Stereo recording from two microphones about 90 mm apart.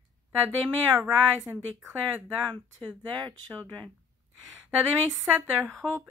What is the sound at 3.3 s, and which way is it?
Speech, 15° left (ahead or behind).